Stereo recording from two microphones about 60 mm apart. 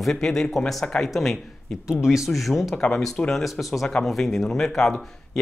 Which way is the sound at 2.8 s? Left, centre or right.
Centre.